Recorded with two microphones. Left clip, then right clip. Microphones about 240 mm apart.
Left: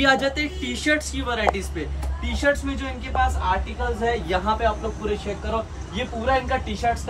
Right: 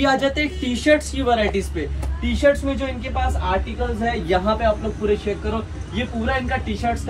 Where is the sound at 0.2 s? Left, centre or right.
Centre.